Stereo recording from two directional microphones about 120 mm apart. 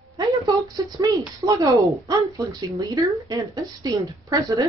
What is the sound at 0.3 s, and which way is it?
Speech, 30° right (ahead or behind).